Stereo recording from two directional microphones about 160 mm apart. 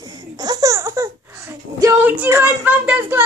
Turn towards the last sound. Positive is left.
turn(degrees=-10)  # may be behind; listen again after turning